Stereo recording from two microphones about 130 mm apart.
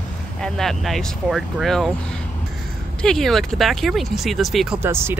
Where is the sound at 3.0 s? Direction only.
5° left (ahead or behind).